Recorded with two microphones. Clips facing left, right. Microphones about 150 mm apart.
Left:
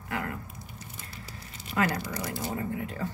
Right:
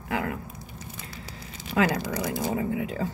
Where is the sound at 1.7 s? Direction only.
90° right.